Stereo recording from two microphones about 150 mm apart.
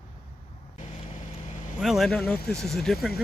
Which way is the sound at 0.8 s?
60° left (ahead or behind).